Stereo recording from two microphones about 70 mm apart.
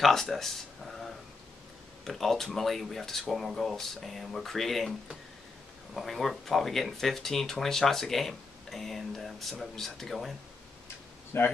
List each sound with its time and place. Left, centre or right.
0.0 s a sound: centre
2.0 s speech: centre
5.9 s speech: centre
11.3 s speech: left